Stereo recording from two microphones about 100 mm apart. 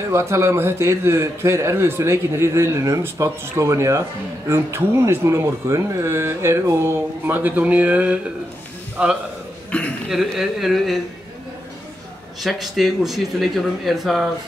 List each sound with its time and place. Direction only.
0.1 s a man's voice: 25° right (ahead or behind); by 9.1 s 10° right (ahead or behind)
9.7 s speech: 15° left (ahead or behind)
10.0 s speech: centre (ahead or behind)
12.4 s speech: centre (ahead or behind)